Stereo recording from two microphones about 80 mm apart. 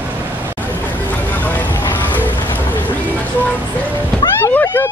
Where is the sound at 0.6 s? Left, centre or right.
Left.